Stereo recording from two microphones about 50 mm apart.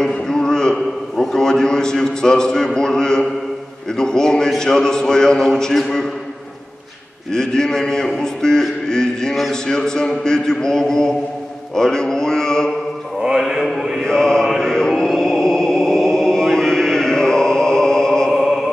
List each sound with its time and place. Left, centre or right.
0.0 s a sound: centre
1.1 s a man's voice: centre
7.3 s a man's voice: centre
13.2 s mantra: centre
14.0 s mantra: centre
14.6 s chant: centre
18.3 s music: centre